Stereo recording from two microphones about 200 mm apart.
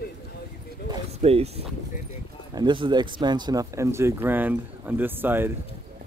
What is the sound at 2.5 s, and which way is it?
Speech, 25° right (ahead or behind).